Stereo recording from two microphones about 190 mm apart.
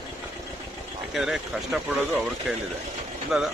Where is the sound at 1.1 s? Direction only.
Centre (ahead or behind).